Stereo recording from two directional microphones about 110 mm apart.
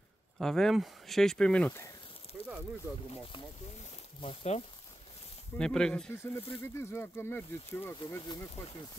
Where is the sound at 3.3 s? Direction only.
50° left (ahead or behind).